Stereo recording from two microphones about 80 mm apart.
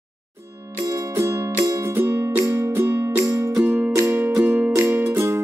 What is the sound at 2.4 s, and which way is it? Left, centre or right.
Music, right.